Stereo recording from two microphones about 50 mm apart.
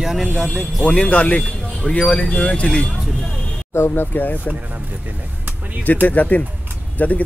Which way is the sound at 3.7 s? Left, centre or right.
Left.